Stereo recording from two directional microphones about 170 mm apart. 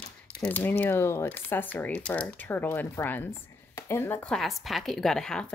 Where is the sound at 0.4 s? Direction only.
10° left (ahead or behind).